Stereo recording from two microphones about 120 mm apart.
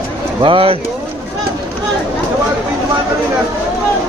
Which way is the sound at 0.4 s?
45° right (ahead or behind).